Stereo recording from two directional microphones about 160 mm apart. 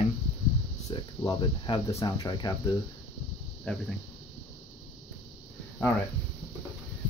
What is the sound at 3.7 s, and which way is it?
Speech, 5° left (ahead or behind).